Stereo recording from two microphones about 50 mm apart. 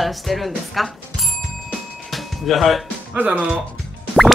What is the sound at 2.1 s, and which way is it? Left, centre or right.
Music, centre.